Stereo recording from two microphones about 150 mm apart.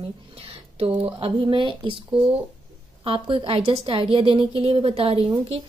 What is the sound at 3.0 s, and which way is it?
A woman's voice, 35° right (ahead or behind).